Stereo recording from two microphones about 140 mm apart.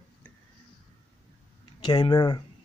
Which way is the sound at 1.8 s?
30° left (ahead or behind).